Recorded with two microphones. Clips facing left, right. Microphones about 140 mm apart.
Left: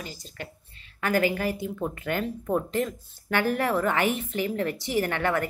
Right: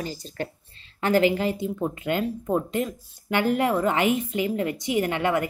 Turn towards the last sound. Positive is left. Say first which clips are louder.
# right 2 dB
turn(degrees=-15)  # may be behind; listen again after turning